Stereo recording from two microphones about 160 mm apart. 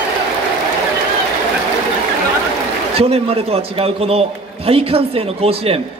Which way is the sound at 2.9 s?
35° right (ahead or behind).